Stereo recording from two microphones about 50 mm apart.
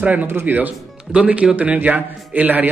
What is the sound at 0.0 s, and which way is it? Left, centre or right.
Speech, right.